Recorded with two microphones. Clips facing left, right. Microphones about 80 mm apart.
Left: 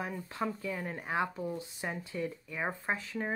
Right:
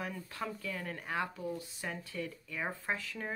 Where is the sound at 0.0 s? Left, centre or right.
Left.